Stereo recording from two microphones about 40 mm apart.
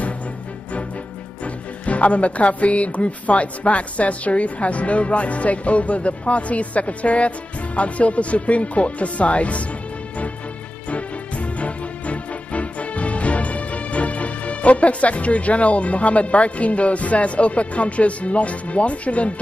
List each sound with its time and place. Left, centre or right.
1.4 s speech: left
10.9 s music: left